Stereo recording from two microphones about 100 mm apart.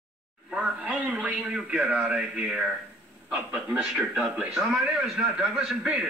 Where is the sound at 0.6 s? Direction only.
15° right (ahead or behind).